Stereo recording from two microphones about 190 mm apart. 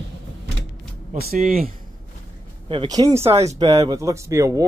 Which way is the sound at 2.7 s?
25° right (ahead or behind).